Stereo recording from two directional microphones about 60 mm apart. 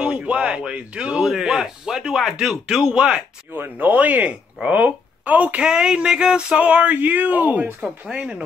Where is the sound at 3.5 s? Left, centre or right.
Right.